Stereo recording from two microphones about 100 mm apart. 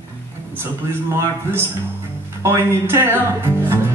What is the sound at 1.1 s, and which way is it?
Speech, 25° right (ahead or behind).